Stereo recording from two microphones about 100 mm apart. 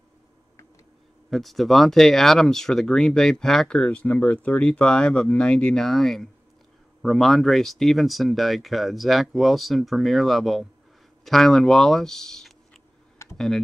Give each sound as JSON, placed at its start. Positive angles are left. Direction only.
{"t": 1.3, "sound": "speech", "side_deg": 0}
{"t": 13.2, "sound": "computer keyboard", "side_deg": 30}